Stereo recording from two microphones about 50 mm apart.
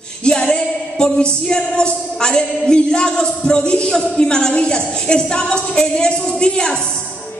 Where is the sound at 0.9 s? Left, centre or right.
Centre.